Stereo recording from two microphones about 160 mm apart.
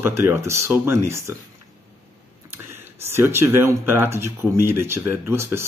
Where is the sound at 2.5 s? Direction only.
15° right (ahead or behind).